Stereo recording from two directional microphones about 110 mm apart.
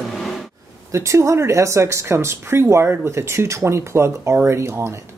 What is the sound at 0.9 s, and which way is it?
Speech, 25° right (ahead or behind).